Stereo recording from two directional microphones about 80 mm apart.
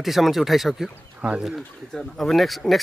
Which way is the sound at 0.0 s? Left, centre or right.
Centre.